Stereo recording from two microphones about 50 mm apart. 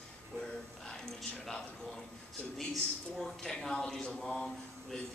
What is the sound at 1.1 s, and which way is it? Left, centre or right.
Speech, centre.